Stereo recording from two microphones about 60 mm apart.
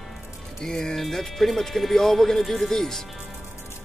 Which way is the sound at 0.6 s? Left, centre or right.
Centre.